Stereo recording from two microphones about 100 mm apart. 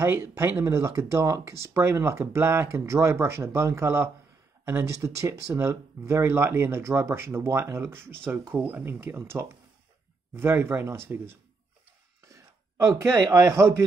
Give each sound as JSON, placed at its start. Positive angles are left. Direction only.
{"t": 0.0, "sound": "a man's voice", "side_deg": -25}